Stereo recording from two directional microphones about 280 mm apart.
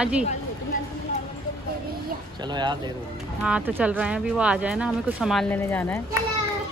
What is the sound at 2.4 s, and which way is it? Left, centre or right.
Speech, centre.